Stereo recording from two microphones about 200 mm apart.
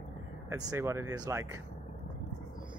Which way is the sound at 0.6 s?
15° right (ahead or behind).